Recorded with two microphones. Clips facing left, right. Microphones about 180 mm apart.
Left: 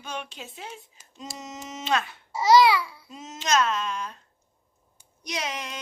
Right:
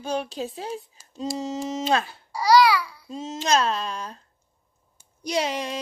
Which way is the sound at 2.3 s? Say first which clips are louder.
Even; 20° left (ahead or behind).